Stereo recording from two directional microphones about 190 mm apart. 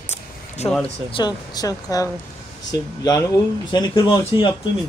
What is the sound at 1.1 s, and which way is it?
Speech, 20° left (ahead or behind).